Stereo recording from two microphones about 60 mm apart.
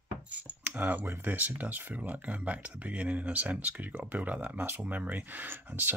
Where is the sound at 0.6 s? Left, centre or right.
Right.